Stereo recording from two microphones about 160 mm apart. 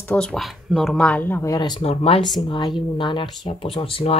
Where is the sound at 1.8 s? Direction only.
40° left (ahead or behind).